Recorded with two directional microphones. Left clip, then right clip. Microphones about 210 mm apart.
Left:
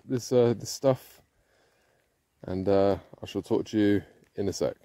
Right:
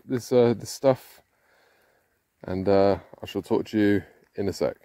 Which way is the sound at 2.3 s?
Centre (ahead or behind).